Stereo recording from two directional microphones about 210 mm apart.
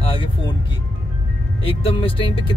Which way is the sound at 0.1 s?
25° left (ahead or behind).